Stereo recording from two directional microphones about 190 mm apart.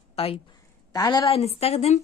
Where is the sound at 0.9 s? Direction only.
20° left (ahead or behind).